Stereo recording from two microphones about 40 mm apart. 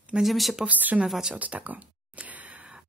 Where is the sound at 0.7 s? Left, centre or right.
Right.